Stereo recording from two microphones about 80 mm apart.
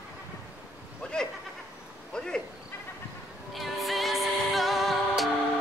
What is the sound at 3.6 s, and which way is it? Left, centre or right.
Music, centre.